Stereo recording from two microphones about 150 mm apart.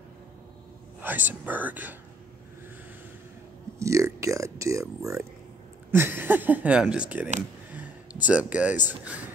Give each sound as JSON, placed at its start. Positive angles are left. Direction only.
{"t": 1.0, "sound": "speech", "side_deg": -10}
{"t": 3.8, "sound": "speech", "side_deg": -20}
{"t": 7.7, "sound": "a sound", "side_deg": -10}
{"t": 8.3, "sound": "speech", "side_deg": -10}